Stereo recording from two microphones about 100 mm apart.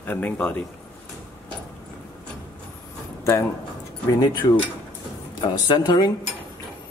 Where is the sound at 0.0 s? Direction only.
15° left (ahead or behind).